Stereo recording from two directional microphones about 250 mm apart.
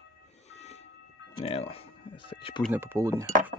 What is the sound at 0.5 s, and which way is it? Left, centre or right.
Train, left.